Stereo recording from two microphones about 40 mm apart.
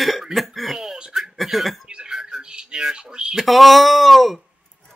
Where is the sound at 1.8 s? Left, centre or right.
Right.